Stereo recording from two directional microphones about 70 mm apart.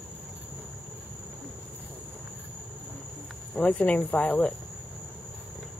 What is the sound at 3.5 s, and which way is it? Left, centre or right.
Speech, left.